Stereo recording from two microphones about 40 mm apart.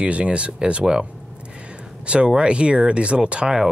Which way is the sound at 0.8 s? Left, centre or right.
Centre.